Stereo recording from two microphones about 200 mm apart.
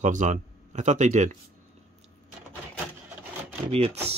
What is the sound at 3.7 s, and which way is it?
Speech, 30° right (ahead or behind).